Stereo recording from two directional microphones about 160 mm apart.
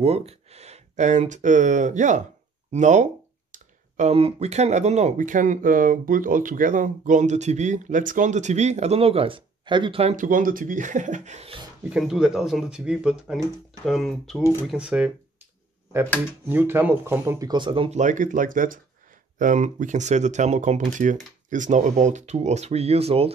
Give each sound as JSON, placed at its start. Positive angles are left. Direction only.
{"t": 0.0, "sound": "speech", "side_deg": -40}
{"t": 10.1, "sound": "speech", "side_deg": -55}
{"t": 11.9, "sound": "speech", "side_deg": -5}
{"t": 16.4, "sound": "speech", "side_deg": -15}